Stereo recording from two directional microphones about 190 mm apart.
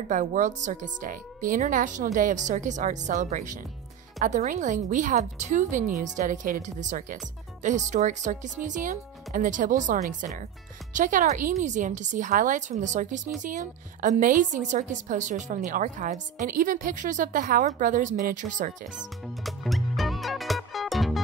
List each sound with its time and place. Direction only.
0.1 s a woman's voice: 40° right (ahead or behind)
18.9 s music: centre (ahead or behind)